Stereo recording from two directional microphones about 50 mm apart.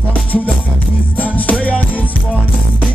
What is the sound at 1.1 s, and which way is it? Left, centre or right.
Music, left.